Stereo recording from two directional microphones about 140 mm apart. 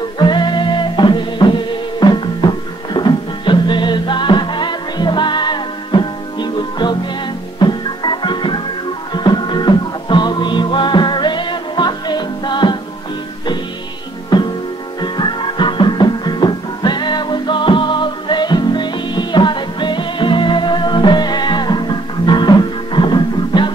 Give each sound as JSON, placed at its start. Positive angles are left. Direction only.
{"t": 0.2, "sound": "music", "side_deg": 35}
{"t": 14.3, "sound": "music", "side_deg": 30}